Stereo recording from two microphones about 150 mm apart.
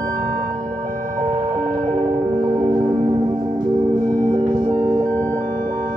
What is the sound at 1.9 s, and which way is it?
Music, 25° right (ahead or behind).